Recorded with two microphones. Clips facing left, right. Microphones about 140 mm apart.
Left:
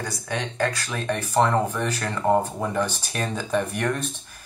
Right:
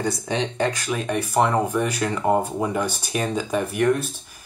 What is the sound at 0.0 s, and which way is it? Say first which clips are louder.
Speech: right 5 dB; 20° right (ahead or behind).